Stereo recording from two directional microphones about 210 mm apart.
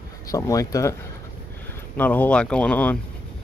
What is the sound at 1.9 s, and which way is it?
Speech, 10° left (ahead or behind).